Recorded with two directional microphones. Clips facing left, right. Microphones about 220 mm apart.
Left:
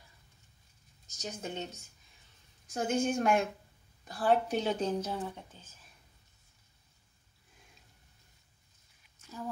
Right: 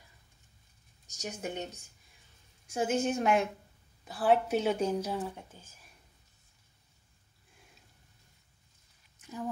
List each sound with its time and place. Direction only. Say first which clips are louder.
1.0 s a woman's voice: right 2 dB; 15° right (ahead or behind)
2.6 s a woman's voice: right 1 dB; 5° right (ahead or behind)